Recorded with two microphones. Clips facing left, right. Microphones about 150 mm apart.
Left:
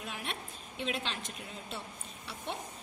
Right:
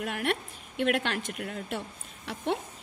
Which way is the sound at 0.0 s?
75° right (ahead or behind).